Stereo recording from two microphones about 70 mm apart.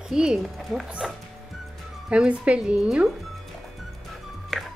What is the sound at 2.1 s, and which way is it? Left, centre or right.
Speech, centre.